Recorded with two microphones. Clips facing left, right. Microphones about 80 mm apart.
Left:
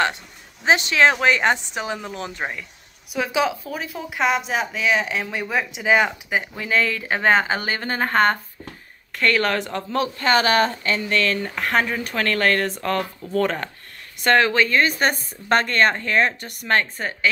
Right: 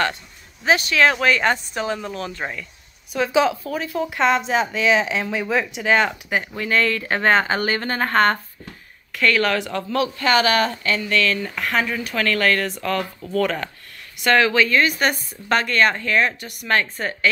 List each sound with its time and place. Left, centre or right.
0.7 s speech: left
3.1 s a woman's voice: centre
9.1 s speech: left
16.6 s speech: left